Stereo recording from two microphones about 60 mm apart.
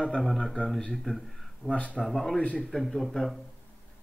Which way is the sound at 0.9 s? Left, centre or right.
Centre.